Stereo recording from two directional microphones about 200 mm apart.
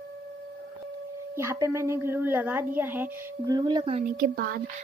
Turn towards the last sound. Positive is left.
turn(degrees=-50)  # may be behind; listen again after turning